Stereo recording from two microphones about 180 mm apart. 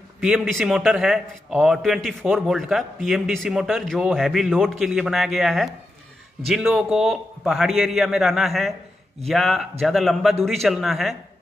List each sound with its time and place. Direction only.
0.2 s a man's voice: centre (ahead or behind)